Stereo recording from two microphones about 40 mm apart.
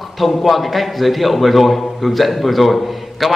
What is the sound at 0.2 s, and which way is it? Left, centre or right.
A man's voice, centre.